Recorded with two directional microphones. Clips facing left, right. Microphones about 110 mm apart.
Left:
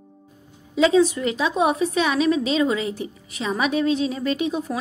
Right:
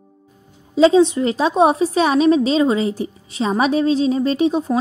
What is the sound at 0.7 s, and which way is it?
A woman's voice, 30° right (ahead or behind).